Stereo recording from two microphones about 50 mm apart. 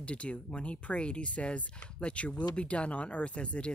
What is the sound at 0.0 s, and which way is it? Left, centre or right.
Speech, left.